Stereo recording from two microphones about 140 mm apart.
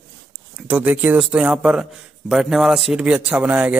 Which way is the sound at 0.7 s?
10° right (ahead or behind).